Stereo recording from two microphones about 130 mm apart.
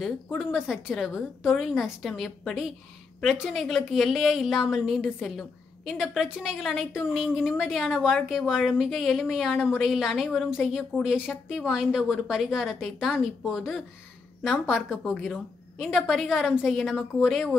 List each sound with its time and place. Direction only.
0.0 s a woman's voice: centre (ahead or behind)